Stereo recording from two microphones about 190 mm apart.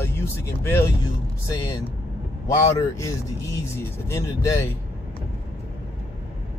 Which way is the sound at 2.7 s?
15° left (ahead or behind).